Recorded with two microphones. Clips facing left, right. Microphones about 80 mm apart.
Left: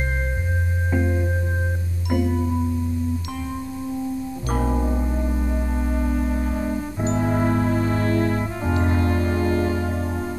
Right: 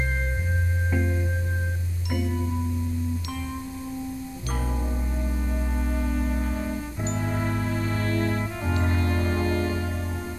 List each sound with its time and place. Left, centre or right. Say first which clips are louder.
0.9 s music: left 6 dB; left
4.5 s music: left 9 dB; left
7.1 s music: left 8 dB; left